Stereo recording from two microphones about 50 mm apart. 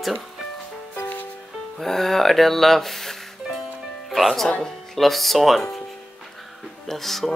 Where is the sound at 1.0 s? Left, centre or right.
Left.